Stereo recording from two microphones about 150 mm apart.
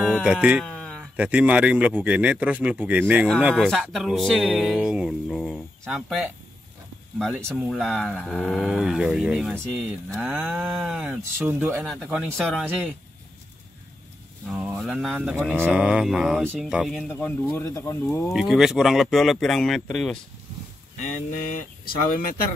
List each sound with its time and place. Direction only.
0.2 s speech: 5° right (ahead or behind)
0.7 s a sound: 5° left (ahead or behind)
1.1 s speech: 10° right (ahead or behind)
10.3 s speech: 10° right (ahead or behind)
14.5 s speech: centre (ahead or behind)
17.1 s speech: 15° left (ahead or behind)
18.3 s speech: centre (ahead or behind)
21.0 s speech: 60° left (ahead or behind)